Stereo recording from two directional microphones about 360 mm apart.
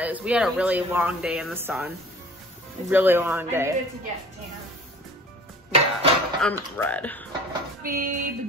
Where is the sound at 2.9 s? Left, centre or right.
Centre.